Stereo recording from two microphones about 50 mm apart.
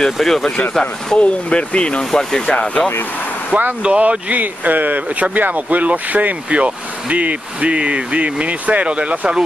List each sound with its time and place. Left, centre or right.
0.0 s speech: centre
1.2 s speech: left
2.0 s speech: centre
2.5 s speech: left
3.8 s speech: right